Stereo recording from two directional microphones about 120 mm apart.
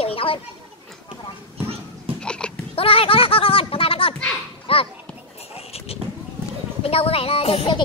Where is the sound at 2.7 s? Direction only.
50° left (ahead or behind).